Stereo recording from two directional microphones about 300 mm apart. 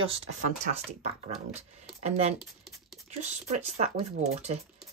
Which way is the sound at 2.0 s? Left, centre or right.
Right.